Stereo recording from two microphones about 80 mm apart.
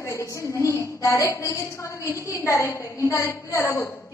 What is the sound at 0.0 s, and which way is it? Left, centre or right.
A woman's voice, left.